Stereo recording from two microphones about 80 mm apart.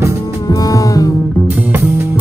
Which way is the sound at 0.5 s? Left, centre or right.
Left.